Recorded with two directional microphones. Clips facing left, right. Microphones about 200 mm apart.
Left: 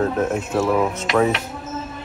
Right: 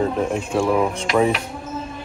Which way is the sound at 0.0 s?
Centre (ahead or behind).